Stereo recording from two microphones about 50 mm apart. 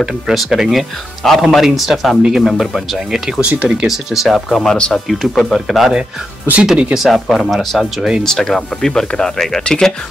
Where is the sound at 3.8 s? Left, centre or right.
Centre.